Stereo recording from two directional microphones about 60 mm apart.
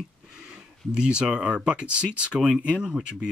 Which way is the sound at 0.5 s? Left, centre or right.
Centre.